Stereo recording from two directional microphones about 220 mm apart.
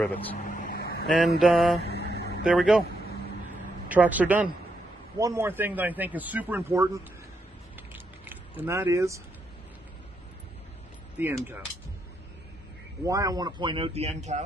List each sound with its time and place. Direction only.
0.0 s speech: 5° left (ahead or behind)
0.5 s vehicle: 40° left (ahead or behind)
1.0 s mantra: centre (ahead or behind)
1.4 s speech: centre (ahead or behind)
2.1 s vehicle: 50° left (ahead or behind)
2.4 s speech: centre (ahead or behind)
3.9 s speech: 5° right (ahead or behind)
7.9 s a sound: 10° right (ahead or behind)
11.1 s speech: 10° right (ahead or behind)
13.0 s speech: 15° right (ahead or behind); by 14.4 s 30° right (ahead or behind)